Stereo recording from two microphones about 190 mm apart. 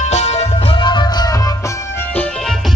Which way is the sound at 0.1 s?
35° left (ahead or behind).